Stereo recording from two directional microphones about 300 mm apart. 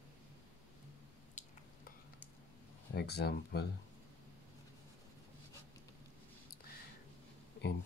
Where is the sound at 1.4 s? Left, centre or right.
Left.